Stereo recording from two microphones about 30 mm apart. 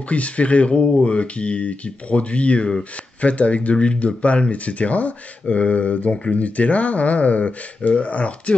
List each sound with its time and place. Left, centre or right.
0.1 s speech: left
3.7 s speech: left
5.5 s speech: left